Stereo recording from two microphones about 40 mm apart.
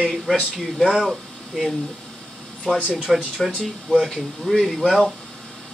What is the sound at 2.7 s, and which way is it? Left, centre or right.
Speech, centre.